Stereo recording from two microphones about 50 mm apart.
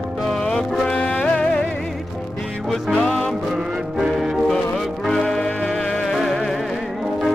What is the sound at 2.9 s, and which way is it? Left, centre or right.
Music, centre.